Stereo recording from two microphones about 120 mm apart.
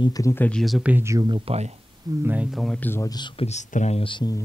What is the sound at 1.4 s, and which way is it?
Speech, 60° right (ahead or behind).